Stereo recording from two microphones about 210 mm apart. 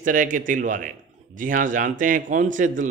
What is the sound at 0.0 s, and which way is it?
Speech, 40° right (ahead or behind).